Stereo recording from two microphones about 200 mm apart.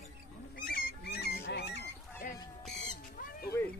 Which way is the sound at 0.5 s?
45° left (ahead or behind).